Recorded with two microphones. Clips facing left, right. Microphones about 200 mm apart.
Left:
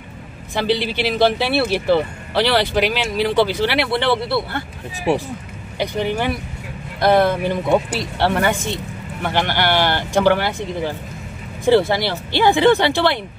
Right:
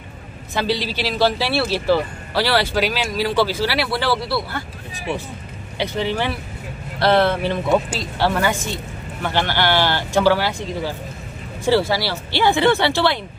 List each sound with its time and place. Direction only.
0.7 s speech: 55° left (ahead or behind)
1.5 s speech: 20° left (ahead or behind)
4.6 s speech: 40° left (ahead or behind)
5.8 s speech: 15° left (ahead or behind)